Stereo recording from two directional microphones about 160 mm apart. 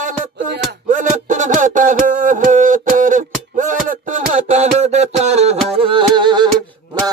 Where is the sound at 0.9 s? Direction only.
50° right (ahead or behind).